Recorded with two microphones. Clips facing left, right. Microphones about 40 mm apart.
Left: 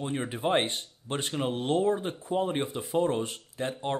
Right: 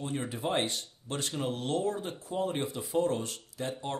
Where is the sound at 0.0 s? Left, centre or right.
Left.